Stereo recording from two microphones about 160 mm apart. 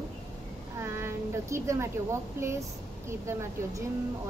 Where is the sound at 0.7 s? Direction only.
15° right (ahead or behind).